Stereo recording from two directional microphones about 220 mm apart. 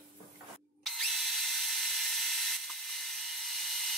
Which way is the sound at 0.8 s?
Centre (ahead or behind).